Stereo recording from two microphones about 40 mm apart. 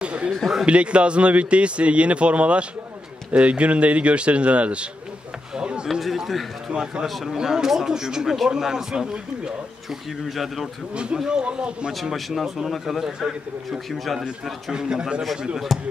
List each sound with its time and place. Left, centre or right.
0.0 s a sound: right
0.7 s a man's voice: right
5.6 s a sound: right
5.9 s a sound: centre
6.7 s a man's voice: centre
7.1 s a man's voice: centre
7.3 s a man's voice: centre
9.8 s a man's voice: centre
11.2 s a man's voice: right
11.9 s a man's voice: centre
14.7 s a man's voice: centre
15.7 s a man's voice: centre